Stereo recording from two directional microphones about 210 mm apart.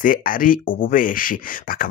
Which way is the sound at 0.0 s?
40° left (ahead or behind).